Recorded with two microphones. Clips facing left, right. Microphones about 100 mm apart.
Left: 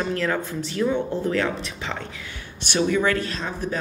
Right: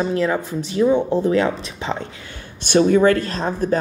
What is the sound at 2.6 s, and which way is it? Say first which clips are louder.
Speech: right 8 dB; 40° right (ahead or behind).